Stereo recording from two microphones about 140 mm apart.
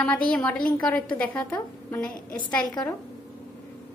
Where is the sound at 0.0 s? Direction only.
5° left (ahead or behind).